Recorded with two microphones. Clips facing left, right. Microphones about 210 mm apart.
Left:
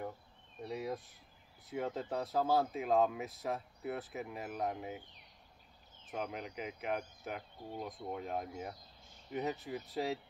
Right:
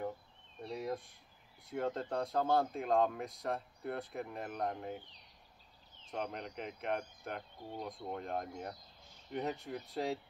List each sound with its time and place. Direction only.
0.6 s speech: 5° left (ahead or behind)
6.1 s speech: 5° left (ahead or behind)